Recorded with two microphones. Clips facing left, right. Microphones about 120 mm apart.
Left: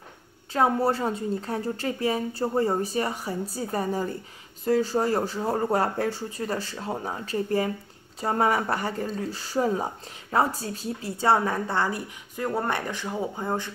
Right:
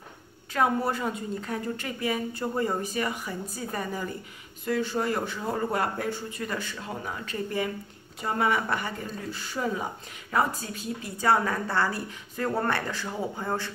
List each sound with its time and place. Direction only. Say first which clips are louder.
0.5 s a woman's voice: left 3 dB; 30° left (ahead or behind)